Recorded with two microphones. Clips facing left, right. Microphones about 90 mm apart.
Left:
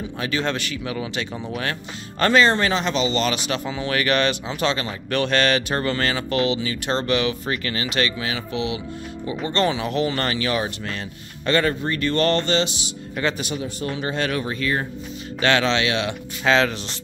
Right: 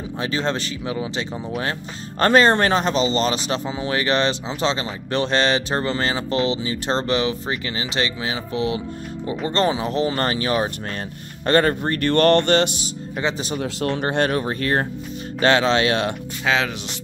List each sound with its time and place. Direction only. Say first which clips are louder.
0.2 s speech: right 1 dB; 30° right (ahead or behind)
1.3 s speech: right 2 dB; 5° right (ahead or behind)
1.6 s speech: right 2 dB; 35° right (ahead or behind)
7.5 s speech: left 1 dB; 20° right (ahead or behind); by 12.7 s 55° right (ahead or behind)
13.6 s speech: right 4 dB; 90° right
13.9 s speech: right 3 dB; 50° right (ahead or behind)
15.4 s speech: right 3 dB; 35° right (ahead or behind)
16.4 s speech: left 3 dB; 10° right (ahead or behind)